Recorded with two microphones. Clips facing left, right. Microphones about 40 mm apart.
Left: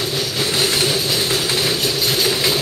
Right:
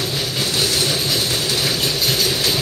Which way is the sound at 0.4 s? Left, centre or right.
Left.